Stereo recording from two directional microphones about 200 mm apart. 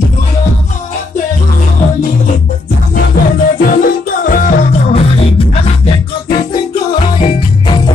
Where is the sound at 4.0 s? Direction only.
45° left (ahead or behind).